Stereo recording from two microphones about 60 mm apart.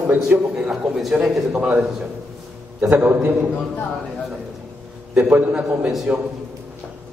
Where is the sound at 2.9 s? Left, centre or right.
Right.